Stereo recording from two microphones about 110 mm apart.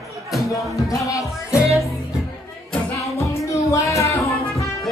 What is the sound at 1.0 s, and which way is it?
Music, 30° left (ahead or behind).